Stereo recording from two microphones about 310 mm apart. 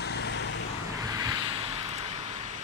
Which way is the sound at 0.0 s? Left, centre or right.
Left.